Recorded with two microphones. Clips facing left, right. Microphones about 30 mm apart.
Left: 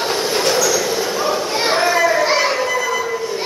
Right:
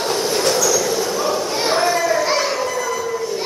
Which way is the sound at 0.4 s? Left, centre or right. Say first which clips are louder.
Left 1 dB; centre.